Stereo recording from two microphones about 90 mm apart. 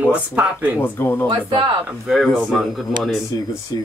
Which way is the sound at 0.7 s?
25° left (ahead or behind).